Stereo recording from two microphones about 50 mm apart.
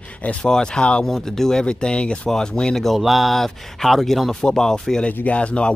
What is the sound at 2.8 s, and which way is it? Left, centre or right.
Speech, centre.